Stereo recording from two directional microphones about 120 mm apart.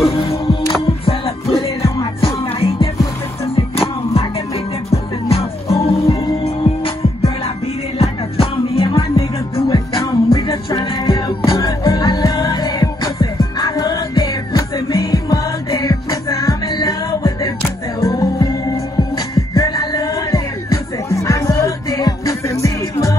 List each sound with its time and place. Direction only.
0.8 s music: 50° left (ahead or behind)
8.0 s music: 50° left (ahead or behind); by 23.1 s 25° left (ahead or behind)